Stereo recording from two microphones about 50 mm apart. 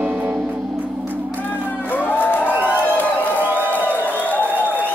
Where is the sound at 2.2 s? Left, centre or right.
Left.